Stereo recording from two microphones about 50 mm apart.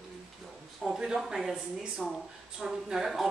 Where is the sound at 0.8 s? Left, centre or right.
Centre.